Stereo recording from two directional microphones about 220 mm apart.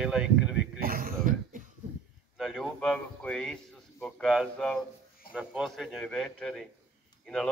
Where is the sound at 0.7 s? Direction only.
40° right (ahead or behind).